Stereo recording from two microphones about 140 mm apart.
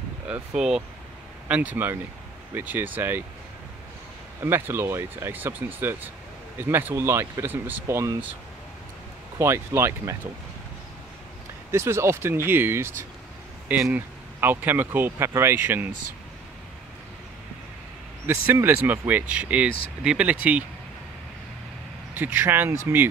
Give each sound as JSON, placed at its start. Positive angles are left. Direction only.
{"t": 0.3, "sound": "speech", "side_deg": -5}
{"t": 4.4, "sound": "speech", "side_deg": -15}
{"t": 9.4, "sound": "speech", "side_deg": -20}
{"t": 11.7, "sound": "speech", "side_deg": -20}
{"t": 18.2, "sound": "speech", "side_deg": -15}
{"t": 22.1, "sound": "speech", "side_deg": -15}